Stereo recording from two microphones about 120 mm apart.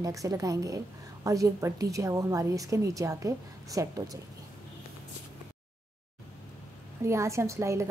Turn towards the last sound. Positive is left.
turn(degrees=-25)  # may be behind; listen again after turning